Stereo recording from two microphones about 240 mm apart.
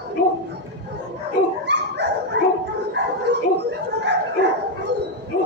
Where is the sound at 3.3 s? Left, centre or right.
Right.